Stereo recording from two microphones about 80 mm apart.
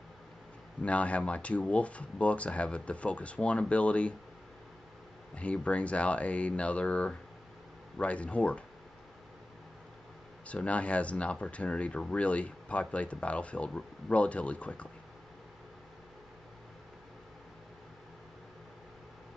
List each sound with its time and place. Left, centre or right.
0.8 s speech: centre
5.3 s speech: centre
10.4 s speech: centre